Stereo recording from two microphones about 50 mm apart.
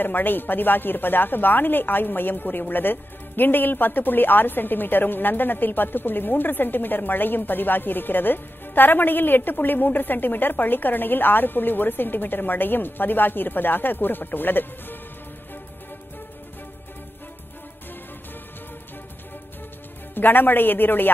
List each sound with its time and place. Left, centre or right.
0.0 s speech: left
20.2 s speech: left